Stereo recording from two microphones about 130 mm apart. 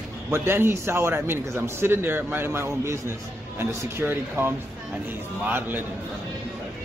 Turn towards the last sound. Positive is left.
turn(degrees=-15)  # may be behind; listen again after turning